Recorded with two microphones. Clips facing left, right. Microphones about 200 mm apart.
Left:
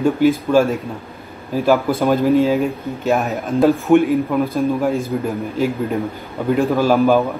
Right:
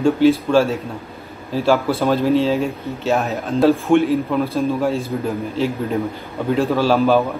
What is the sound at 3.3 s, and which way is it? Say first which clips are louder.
A man's voice: right 1 dB; 15° left (ahead or behind).